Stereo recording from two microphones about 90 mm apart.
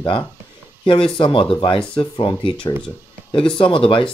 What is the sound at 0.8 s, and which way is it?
Speech, 70° left (ahead or behind).